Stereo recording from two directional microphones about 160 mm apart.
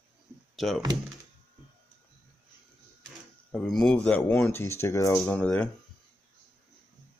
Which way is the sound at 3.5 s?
5° left (ahead or behind).